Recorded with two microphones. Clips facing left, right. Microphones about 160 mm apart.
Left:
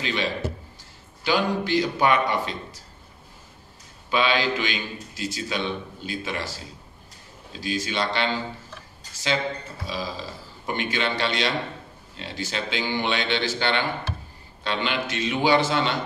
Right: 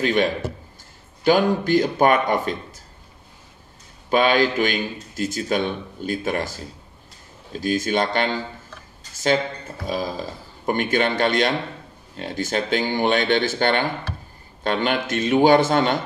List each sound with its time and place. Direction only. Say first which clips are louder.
0.0 s a man's voice: right 7 dB; 50° right (ahead or behind)
4.1 s a man's voice: right 5 dB; 50° right (ahead or behind)
7.6 s a man's voice: right 6 dB; 50° right (ahead or behind)